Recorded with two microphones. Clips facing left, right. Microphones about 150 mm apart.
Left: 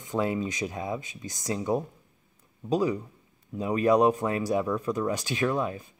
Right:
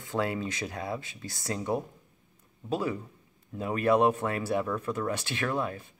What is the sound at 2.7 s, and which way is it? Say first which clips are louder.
Speech: left 5 dB; 15° left (ahead or behind).